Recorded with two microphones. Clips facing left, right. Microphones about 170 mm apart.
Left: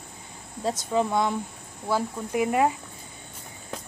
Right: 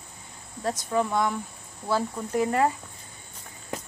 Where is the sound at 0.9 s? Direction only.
20° left (ahead or behind).